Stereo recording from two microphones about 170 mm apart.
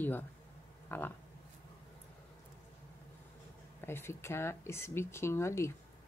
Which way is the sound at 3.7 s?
15° left (ahead or behind).